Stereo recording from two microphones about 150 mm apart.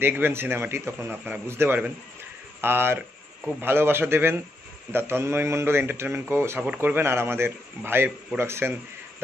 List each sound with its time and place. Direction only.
0.0 s a man's voice: 15° right (ahead or behind)